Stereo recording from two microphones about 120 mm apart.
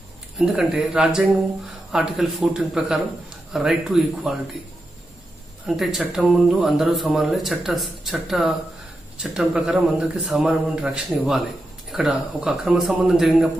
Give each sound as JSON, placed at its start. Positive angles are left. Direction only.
{"t": 0.4, "sound": "a man's voice", "side_deg": -5}
{"t": 5.8, "sound": "a man's voice", "side_deg": -5}